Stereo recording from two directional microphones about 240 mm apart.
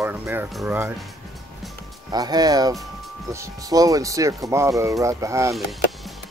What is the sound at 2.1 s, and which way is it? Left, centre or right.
Speech, centre.